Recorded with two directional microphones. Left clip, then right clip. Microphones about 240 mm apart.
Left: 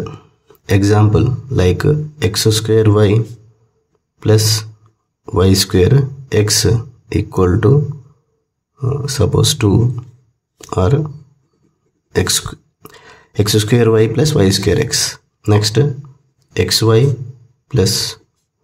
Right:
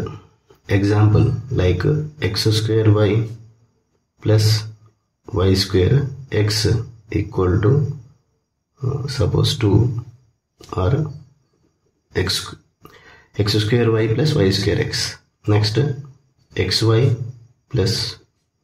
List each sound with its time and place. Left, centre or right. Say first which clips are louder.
0.7 s speech: left 5 dB; left
4.2 s speech: left 6 dB; left
8.7 s speech: left 6 dB; left
12.1 s speech: left 5 dB; left